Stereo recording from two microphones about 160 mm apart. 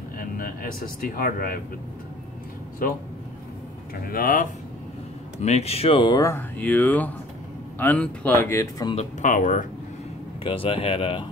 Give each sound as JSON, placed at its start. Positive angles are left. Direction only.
{"t": 0.2, "sound": "speech", "side_deg": 65}
{"t": 2.8, "sound": "speech", "side_deg": 65}
{"t": 5.4, "sound": "speech", "side_deg": 40}
{"t": 8.5, "sound": "speech", "side_deg": 20}
{"t": 8.9, "sound": "speech", "side_deg": 50}
{"t": 10.4, "sound": "speech", "side_deg": 35}